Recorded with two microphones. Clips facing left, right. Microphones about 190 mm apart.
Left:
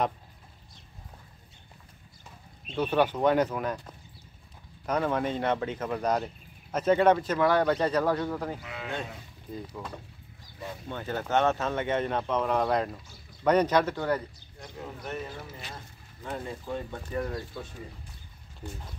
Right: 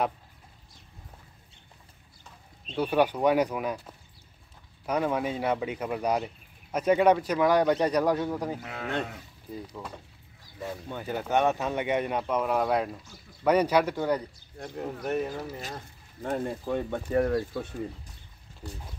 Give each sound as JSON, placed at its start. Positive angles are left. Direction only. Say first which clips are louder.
{"t": 2.7, "sound": "speech", "louder": "right 1 dB", "side_deg": -10}
{"t": 8.5, "sound": "speech", "louder": "right 4 dB", "side_deg": -50}
{"t": 10.9, "sound": "speech", "louder": "even", "side_deg": -10}
{"t": 14.6, "sound": "speech", "louder": "right 6 dB", "side_deg": -55}
{"t": 16.3, "sound": "speech", "louder": "right 5 dB", "side_deg": -50}